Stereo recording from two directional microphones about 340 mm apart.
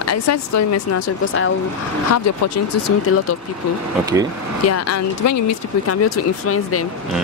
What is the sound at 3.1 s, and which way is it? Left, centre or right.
Speech, left.